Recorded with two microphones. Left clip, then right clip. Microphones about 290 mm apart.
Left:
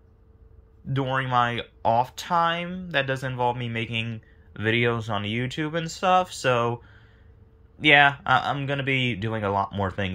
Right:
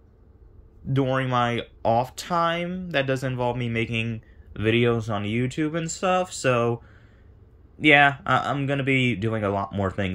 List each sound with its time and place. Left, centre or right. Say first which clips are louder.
0.9 s speech: even; centre